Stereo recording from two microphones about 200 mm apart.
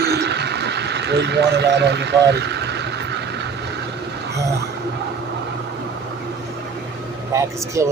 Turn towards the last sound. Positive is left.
turn(degrees=-15)  # may be behind; listen again after turning